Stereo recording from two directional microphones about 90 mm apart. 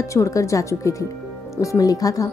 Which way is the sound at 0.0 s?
35° left (ahead or behind).